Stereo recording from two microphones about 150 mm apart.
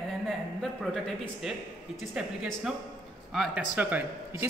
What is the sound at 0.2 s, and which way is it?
A man's voice, centre (ahead or behind).